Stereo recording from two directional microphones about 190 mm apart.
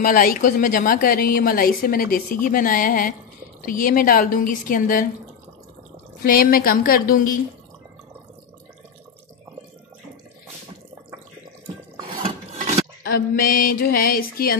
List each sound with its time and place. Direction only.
0.0 s a woman's voice: 50° left (ahead or behind)
6.2 s a woman's voice: 50° left (ahead or behind)
12.2 s filing: 40° right (ahead or behind)
13.0 s a woman's voice: 50° left (ahead or behind)